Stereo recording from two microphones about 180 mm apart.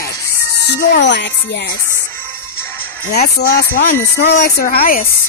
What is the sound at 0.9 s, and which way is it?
Speech, 75° left (ahead or behind).